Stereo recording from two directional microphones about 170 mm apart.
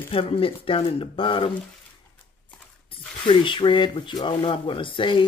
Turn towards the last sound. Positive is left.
turn(degrees=30)  # may be behind; listen again after turning